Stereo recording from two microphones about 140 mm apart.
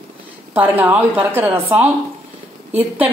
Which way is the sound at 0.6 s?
10° right (ahead or behind).